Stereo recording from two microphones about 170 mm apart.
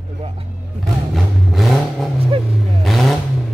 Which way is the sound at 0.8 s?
Centre (ahead or behind).